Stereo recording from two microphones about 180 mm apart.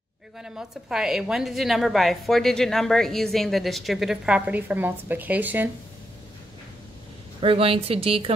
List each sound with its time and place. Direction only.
0.4 s a woman's voice: 5° right (ahead or behind)
7.3 s a woman's voice: 30° right (ahead or behind)